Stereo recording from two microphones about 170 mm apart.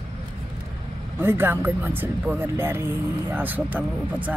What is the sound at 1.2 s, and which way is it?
Speech, 15° right (ahead or behind).